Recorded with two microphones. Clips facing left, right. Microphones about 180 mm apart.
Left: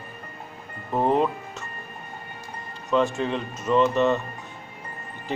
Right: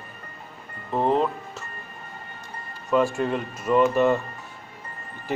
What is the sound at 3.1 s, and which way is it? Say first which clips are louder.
Speech: right 1 dB; 5° right (ahead or behind).